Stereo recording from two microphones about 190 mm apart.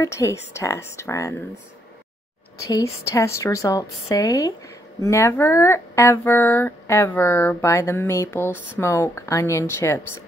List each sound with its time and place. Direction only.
0.0 s speech: 15° left (ahead or behind)
2.7 s speech: 15° left (ahead or behind)